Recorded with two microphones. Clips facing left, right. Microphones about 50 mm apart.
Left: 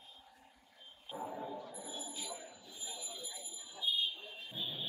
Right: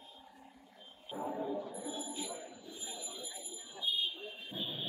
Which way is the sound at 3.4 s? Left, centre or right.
Centre.